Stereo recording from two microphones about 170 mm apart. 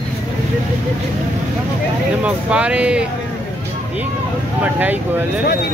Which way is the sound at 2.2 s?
5° right (ahead or behind).